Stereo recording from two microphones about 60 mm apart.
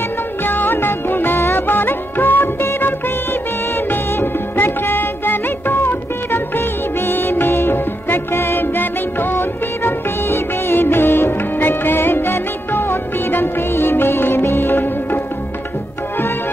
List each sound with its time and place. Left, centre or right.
0.5 s music: left
3.9 s music: left